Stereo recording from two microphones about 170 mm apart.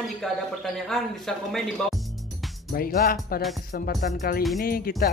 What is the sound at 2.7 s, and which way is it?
Speech, 60° left (ahead or behind).